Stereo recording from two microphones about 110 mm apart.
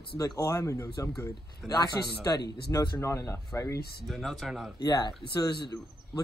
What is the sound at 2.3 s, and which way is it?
Speech, 30° left (ahead or behind).